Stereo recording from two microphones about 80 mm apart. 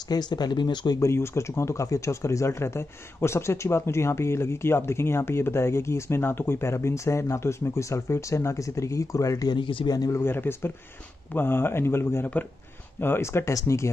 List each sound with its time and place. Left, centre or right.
0.1 s speech: left
0.9 s speech: left
9.5 s speech: left
9.9 s a man's voice: left
10.2 s speech: left